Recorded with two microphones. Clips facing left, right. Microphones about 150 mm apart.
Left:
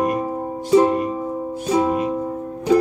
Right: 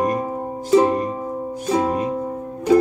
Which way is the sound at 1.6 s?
5° right (ahead or behind).